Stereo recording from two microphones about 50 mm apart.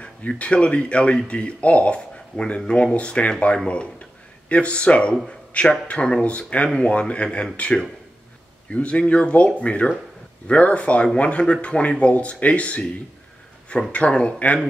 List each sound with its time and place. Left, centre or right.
0.4 s speech: left
13.9 s speech: left